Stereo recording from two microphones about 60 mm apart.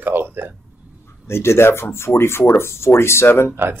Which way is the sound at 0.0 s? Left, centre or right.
Right.